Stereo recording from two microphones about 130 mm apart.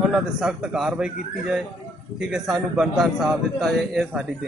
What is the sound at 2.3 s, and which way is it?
A man's voice, 5° right (ahead or behind).